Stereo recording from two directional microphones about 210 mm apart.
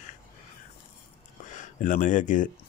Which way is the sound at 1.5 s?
40° left (ahead or behind).